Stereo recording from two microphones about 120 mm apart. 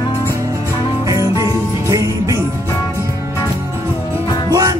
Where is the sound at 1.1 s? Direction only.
30° right (ahead or behind).